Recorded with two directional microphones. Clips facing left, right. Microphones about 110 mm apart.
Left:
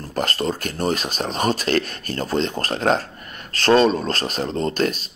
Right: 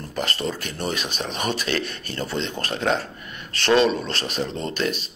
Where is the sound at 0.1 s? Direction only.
45° left (ahead or behind).